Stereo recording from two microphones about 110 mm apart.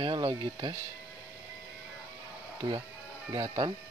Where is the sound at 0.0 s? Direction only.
45° right (ahead or behind).